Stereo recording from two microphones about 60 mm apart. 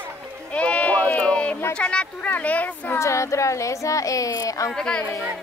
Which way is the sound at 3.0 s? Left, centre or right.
Left.